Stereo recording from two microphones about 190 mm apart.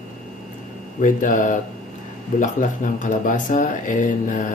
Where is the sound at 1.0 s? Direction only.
45° left (ahead or behind).